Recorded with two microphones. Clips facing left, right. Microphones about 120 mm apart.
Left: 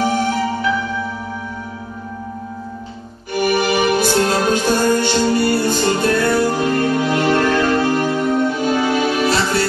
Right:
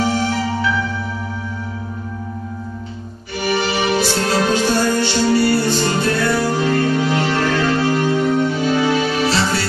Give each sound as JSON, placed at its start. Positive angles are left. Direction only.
{"t": 0.0, "sound": "music", "side_deg": 45}
{"t": 3.3, "sound": "music", "side_deg": 50}